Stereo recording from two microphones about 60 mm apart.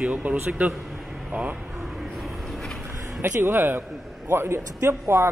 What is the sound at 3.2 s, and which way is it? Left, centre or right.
A man's voice, right.